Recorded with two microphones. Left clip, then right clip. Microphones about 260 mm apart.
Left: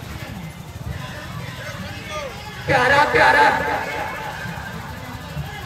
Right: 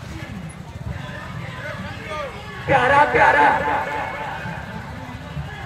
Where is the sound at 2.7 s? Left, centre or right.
Centre.